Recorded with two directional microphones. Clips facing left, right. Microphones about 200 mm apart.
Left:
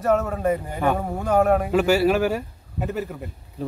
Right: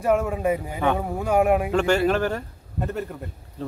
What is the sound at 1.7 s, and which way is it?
A man's voice, 5° left (ahead or behind).